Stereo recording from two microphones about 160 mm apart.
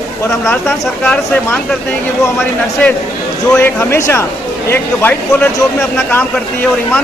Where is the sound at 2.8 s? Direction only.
10° left (ahead or behind).